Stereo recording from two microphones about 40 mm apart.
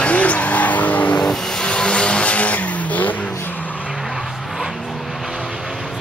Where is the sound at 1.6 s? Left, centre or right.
Left.